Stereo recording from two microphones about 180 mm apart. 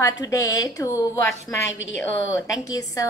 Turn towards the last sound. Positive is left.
turn(degrees=20)  # may be behind; listen again after turning